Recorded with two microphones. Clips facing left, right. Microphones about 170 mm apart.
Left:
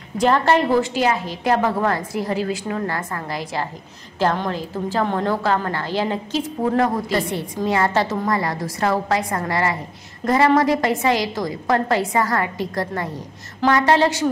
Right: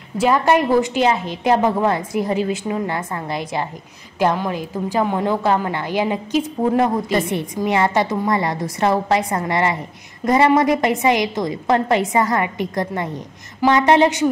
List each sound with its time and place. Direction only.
0.2 s a woman's voice: 10° right (ahead or behind)